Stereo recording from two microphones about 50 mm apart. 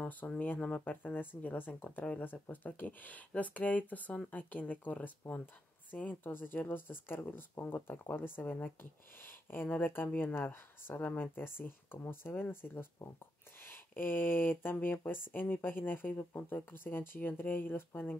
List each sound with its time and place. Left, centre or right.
0.2 s speech: left